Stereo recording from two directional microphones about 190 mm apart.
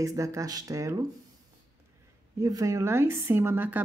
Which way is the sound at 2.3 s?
15° right (ahead or behind).